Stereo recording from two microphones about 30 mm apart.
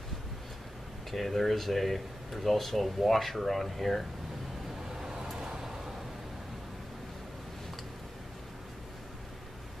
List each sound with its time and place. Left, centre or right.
1.1 s speech: centre
4.9 s vehicle: centre